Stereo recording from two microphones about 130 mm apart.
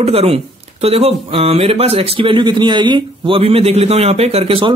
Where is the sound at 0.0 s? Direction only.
50° right (ahead or behind).